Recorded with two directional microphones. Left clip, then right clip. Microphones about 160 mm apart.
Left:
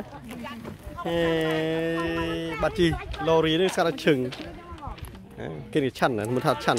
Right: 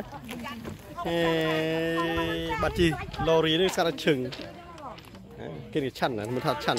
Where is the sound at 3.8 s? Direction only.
30° left (ahead or behind); by 6.8 s 45° left (ahead or behind).